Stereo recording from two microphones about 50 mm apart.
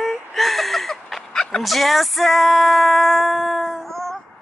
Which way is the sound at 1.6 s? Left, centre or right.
Centre.